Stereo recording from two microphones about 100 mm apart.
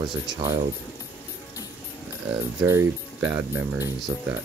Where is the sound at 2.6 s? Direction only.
25° right (ahead or behind).